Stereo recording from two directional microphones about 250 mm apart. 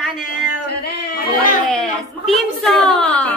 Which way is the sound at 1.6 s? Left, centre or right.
Centre.